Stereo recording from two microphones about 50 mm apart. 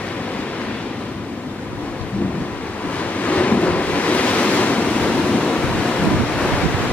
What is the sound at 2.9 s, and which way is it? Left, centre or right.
Waves, left.